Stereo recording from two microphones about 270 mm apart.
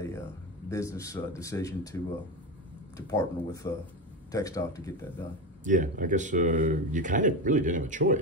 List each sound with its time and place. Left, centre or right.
0.7 s speech: centre
3.1 s speech: centre
5.6 s speech: right